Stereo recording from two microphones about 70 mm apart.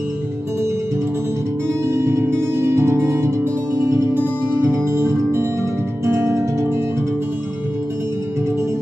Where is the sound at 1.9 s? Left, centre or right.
Right.